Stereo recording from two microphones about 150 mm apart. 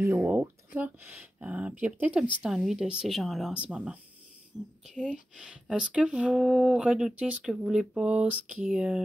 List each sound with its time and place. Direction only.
0.0 s speech: 10° right (ahead or behind)
4.8 s speech: 5° left (ahead or behind)
5.3 s speech: 5° right (ahead or behind)